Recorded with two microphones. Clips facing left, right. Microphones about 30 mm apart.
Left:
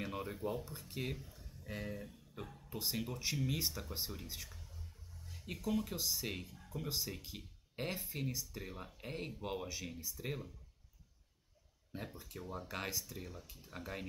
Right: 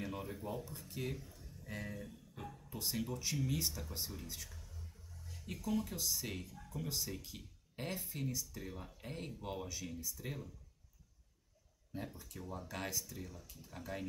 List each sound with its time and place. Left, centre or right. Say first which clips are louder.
0.0 s speech: left 3 dB; left
5.3 s a sound: left 1 dB; left
5.9 s speech: left 1 dB; centre
11.9 s speech: right 1 dB; left